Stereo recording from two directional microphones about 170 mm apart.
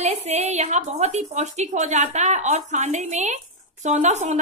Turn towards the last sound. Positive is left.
turn(degrees=-45)  # may be behind; listen again after turning